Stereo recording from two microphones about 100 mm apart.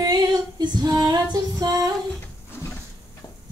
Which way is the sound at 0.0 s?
40° right (ahead or behind).